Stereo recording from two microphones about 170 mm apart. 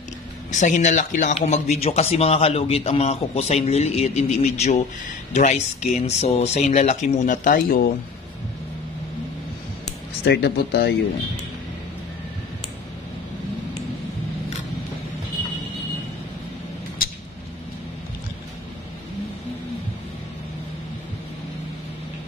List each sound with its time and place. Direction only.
0.5 s speech: 45° left (ahead or behind)
10.2 s speech: 75° left (ahead or behind)